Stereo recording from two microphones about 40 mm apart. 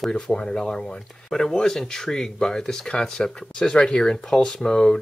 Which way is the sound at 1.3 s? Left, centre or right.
Centre.